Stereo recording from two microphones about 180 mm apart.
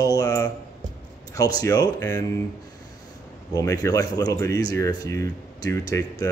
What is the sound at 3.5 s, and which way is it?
Speech, 20° left (ahead or behind).